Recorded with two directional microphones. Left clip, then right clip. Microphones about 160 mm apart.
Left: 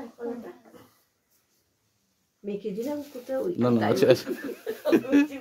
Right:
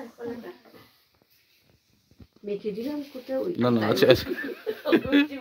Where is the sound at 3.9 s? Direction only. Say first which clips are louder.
Right 2 dB; centre (ahead or behind).